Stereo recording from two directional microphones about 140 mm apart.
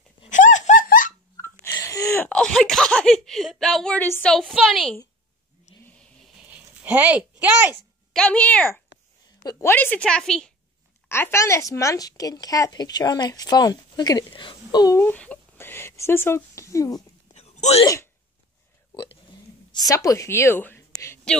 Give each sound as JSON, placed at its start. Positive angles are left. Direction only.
{"t": 0.3, "sound": "laughter", "side_deg": 65}
{"t": 1.3, "sound": "a sound", "side_deg": 20}
{"t": 2.2, "sound": "speech", "side_deg": 5}
{"t": 6.3, "sound": "a sound", "side_deg": -10}
{"t": 8.1, "sound": "a woman's voice", "side_deg": 5}
{"t": 9.4, "sound": "a woman's voice", "side_deg": 25}
{"t": 9.7, "sound": "a woman's voice", "side_deg": 10}
{"t": 11.1, "sound": "a woman's voice", "side_deg": 15}
{"t": 15.0, "sound": "speech", "side_deg": 10}
{"t": 17.3, "sound": "wail", "side_deg": 50}
{"t": 19.7, "sound": "a woman's voice", "side_deg": 25}